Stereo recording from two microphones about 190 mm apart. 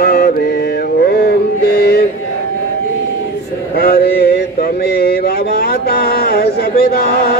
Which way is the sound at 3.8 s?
55° left (ahead or behind).